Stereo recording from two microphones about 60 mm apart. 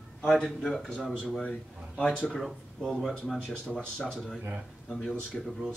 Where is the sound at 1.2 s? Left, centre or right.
Centre.